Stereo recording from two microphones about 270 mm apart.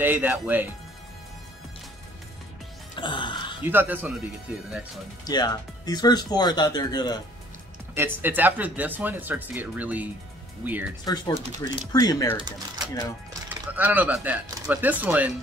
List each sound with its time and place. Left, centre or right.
0.0 s speech: centre
3.0 s music: centre
3.6 s speech: centre
5.2 s speech: centre
7.9 s speech: centre
11.1 s speech: centre
13.5 s speech: centre